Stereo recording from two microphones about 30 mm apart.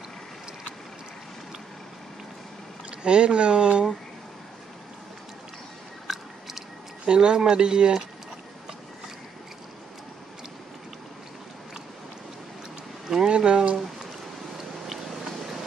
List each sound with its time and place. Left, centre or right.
3.0 s speech: right
6.0 s biting: centre
7.1 s speech: right
13.3 s a sound: right